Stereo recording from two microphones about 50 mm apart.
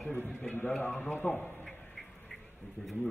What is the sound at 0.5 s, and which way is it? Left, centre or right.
Speech, left.